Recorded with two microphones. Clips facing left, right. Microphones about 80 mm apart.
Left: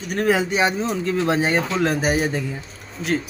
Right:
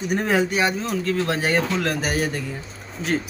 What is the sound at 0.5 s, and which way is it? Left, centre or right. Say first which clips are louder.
Speech: left 2 dB; left.